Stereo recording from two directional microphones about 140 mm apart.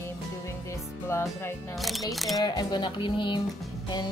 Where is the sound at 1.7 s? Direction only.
Centre (ahead or behind).